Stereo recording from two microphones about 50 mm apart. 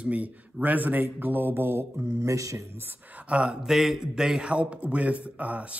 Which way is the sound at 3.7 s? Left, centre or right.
Centre.